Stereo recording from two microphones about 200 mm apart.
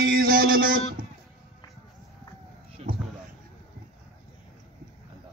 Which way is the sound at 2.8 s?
30° right (ahead or behind).